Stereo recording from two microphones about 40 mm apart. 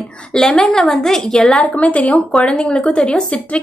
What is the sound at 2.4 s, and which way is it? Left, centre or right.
Speech, left.